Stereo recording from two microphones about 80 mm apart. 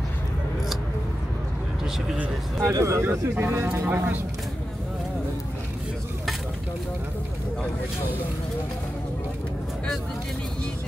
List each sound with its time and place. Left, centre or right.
2.6 s speech: right